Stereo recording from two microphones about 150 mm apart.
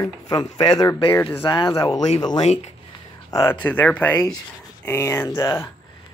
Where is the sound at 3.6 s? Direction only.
10° left (ahead or behind).